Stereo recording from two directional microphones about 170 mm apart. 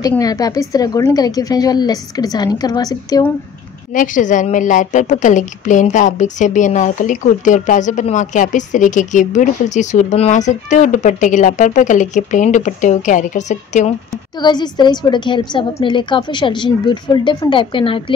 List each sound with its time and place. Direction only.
0.2 s a woman's voice: 20° left (ahead or behind)
3.9 s a woman's voice: 50° left (ahead or behind)
14.4 s a woman's voice: 25° left (ahead or behind)